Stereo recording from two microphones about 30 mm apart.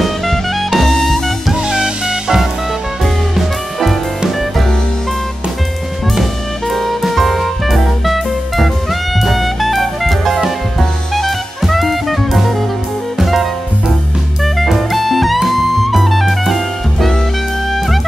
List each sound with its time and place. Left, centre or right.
0.7 s music: centre
1.5 s music: right
6.7 s music: centre
9.2 s drum kit: centre
13.2 s music: centre